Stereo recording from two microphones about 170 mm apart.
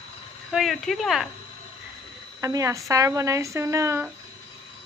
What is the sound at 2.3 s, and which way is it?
A man's voice, 20° right (ahead or behind).